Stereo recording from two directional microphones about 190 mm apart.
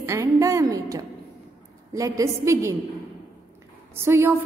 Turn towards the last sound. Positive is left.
turn(degrees=-15)  # may be behind; listen again after turning